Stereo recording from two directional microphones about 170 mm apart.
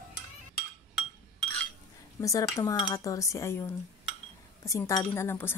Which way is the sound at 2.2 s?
20° left (ahead or behind).